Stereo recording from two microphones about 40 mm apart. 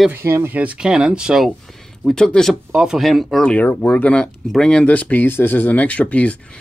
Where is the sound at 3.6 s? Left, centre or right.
Left.